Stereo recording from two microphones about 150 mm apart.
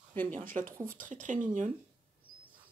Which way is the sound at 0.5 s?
60° right (ahead or behind).